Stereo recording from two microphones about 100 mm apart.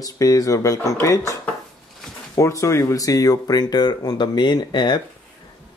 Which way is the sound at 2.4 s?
30° left (ahead or behind).